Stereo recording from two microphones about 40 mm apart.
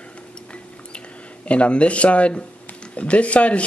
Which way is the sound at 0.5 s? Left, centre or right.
Left.